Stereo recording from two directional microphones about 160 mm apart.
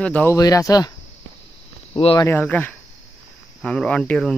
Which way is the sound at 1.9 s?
30° left (ahead or behind).